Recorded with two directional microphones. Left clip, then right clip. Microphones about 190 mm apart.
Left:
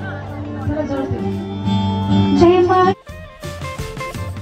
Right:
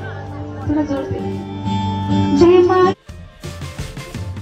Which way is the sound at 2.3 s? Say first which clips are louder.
Right 1 dB; centre (ahead or behind).